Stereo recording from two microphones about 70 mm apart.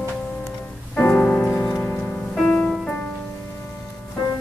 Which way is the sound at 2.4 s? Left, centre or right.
Centre.